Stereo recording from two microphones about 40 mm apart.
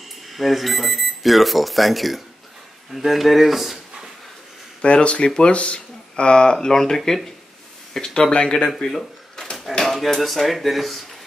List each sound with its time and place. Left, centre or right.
0.3 s speech: centre
4.8 s speech: left
8.3 s speech: left; by 11.1 s centre